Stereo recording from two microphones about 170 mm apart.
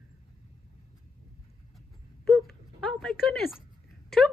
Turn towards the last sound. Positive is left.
turn(degrees=0)  # may be behind; listen again after turning